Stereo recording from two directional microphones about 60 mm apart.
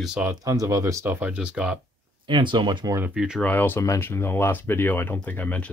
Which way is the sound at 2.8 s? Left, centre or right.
Right.